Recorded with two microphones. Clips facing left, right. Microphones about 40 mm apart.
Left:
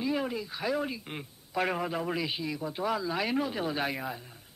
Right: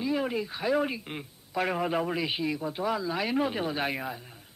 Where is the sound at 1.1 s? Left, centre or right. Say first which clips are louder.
Right 1 dB; centre.